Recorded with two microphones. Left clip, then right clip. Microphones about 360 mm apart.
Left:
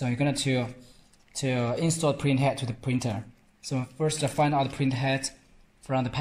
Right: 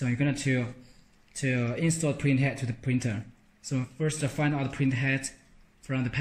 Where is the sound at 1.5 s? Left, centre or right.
Left.